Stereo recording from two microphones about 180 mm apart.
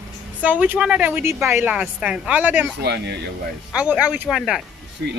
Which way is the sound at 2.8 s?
65° right (ahead or behind).